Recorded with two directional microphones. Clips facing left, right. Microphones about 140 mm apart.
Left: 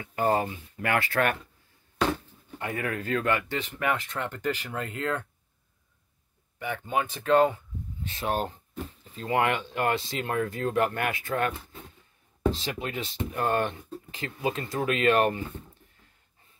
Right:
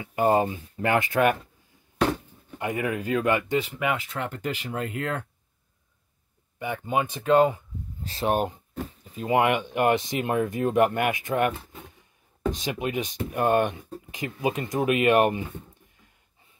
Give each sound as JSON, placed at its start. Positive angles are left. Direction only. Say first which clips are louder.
{"t": 0.0, "sound": "speech", "louder": "right 4 dB", "side_deg": -20}
{"t": 6.6, "sound": "speech", "louder": "right 2 dB", "side_deg": -15}
{"t": 8.0, "sound": "speech", "louder": "right 5 dB", "side_deg": -35}
{"t": 8.3, "sound": "speech", "louder": "right 4 dB", "side_deg": -15}